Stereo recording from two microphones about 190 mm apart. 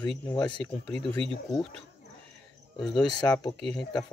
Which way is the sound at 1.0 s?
5° left (ahead or behind).